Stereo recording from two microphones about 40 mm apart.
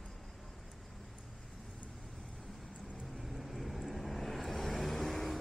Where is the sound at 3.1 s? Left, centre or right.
Centre.